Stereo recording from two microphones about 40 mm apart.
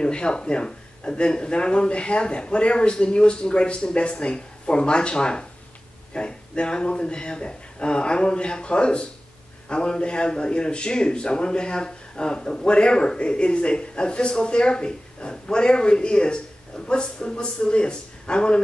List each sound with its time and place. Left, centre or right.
0.0 s a man's voice: left